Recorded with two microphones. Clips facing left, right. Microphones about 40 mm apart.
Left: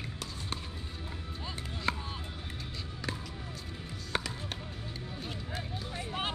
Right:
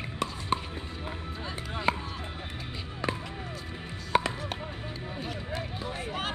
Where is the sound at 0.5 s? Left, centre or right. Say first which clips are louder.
Right 11 dB; right.